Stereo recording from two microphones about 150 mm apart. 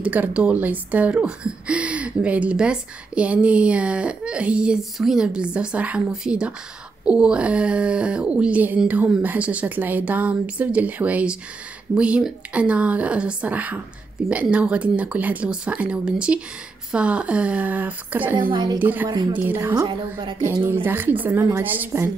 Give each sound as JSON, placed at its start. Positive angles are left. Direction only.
{"t": 0.0, "sound": "speech", "side_deg": -10}
{"t": 18.5, "sound": "a woman's voice", "side_deg": -25}
{"t": 18.8, "sound": "speech", "side_deg": -10}
{"t": 19.8, "sound": "a woman's voice", "side_deg": -30}
{"t": 20.6, "sound": "speech", "side_deg": -15}